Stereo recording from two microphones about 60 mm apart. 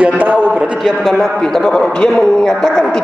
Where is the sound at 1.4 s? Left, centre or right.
Centre.